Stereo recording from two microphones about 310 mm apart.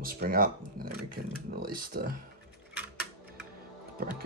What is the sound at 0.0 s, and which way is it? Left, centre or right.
Speech, right.